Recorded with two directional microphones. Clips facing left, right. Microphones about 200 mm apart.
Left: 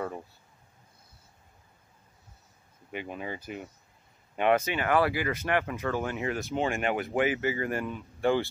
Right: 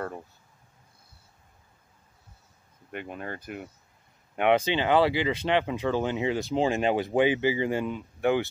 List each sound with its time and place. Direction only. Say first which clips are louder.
2.9 s speech: even; 5° left (ahead or behind)
4.4 s speech: right 2 dB; 15° right (ahead or behind)